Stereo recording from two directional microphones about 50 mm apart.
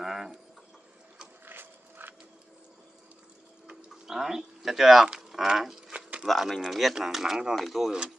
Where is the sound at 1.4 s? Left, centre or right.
Right.